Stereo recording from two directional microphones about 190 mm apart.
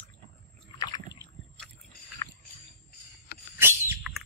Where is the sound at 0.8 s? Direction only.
20° left (ahead or behind).